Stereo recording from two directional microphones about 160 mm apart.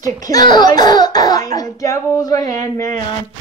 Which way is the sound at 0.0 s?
20° left (ahead or behind).